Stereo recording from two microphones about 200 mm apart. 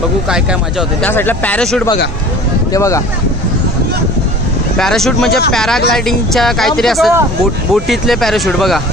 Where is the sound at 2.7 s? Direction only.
15° left (ahead or behind).